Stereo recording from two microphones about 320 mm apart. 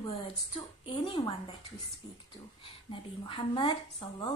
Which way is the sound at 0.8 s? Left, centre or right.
Centre.